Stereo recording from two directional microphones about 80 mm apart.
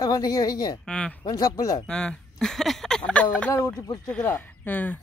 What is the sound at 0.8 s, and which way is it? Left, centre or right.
Speech, centre.